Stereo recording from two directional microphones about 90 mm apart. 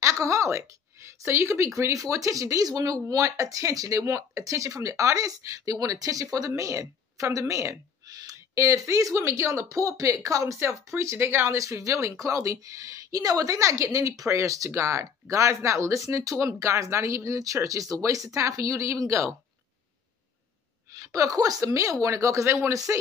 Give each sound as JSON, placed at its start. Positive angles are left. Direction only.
{"t": 0.0, "sound": "a woman's voice", "side_deg": -35}
{"t": 20.9, "sound": "speech", "side_deg": -35}